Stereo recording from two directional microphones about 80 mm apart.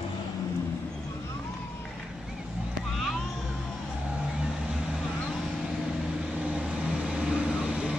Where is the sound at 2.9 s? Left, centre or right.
Centre.